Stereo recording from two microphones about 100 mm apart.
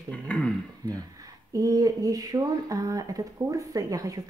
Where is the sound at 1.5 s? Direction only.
35° right (ahead or behind).